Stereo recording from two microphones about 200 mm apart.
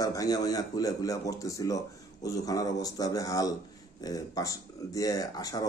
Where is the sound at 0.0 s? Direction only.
20° left (ahead or behind).